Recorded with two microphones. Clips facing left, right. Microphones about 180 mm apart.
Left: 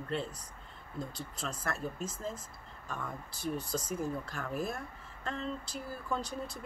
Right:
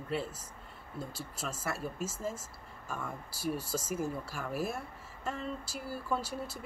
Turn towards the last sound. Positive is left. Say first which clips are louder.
# right 1 dB
turn(degrees=-5)  # may be behind; listen again after turning